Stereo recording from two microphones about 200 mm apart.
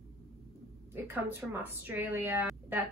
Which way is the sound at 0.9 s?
10° right (ahead or behind).